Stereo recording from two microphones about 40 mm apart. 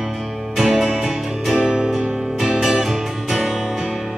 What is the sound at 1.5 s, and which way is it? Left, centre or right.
Music, right.